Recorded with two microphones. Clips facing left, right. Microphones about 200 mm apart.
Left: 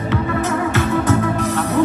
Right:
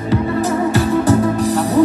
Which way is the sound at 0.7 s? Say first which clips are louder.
Right 4 dB; 35° right (ahead or behind).